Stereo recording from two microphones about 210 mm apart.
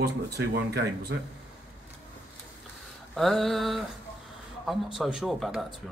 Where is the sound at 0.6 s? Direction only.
50° right (ahead or behind).